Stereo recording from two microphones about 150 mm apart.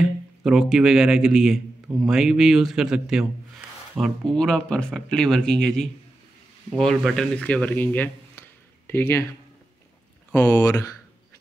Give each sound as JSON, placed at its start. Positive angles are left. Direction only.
{"t": 0.0, "sound": "speech", "side_deg": -5}
{"t": 10.3, "sound": "speech", "side_deg": 15}